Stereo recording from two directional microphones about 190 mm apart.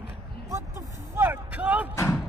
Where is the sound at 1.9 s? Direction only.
15° left (ahead or behind).